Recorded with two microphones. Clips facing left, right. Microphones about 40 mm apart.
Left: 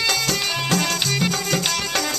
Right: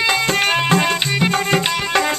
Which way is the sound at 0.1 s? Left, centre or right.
Right.